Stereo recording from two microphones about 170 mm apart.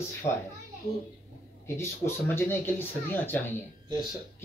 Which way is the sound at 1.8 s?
15° left (ahead or behind).